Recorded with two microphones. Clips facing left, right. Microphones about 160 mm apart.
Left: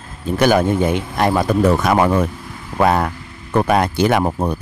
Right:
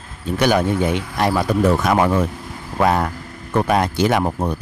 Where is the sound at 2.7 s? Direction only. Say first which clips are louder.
Left 2 dB; 60° left (ahead or behind).